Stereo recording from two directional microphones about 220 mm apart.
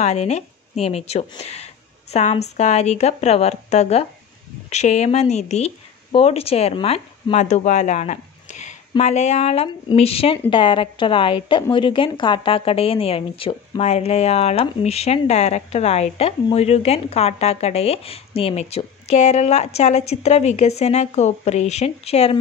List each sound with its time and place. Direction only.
0.0 s a woman's voice: 30° left (ahead or behind)